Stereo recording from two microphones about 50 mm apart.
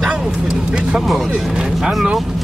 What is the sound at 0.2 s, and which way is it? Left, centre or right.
Vehicle, centre.